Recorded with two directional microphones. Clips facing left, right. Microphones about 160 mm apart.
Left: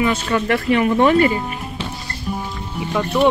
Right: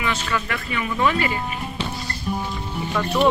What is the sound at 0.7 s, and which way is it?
Speech, 65° left (ahead or behind).